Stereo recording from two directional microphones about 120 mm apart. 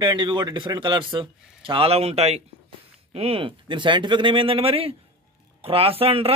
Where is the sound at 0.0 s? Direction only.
40° right (ahead or behind).